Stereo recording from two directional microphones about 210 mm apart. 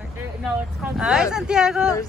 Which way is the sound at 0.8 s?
5° right (ahead or behind).